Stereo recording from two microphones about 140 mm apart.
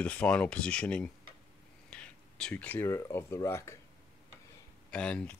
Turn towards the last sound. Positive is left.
turn(degrees=5)  # may be behind; listen again after turning